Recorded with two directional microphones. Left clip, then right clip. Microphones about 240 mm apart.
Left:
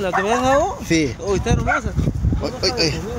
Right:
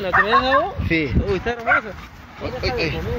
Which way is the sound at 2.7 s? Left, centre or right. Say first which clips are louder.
Left 3 dB; left.